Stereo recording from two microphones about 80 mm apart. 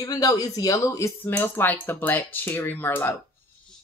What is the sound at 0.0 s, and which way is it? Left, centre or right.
Speech, left.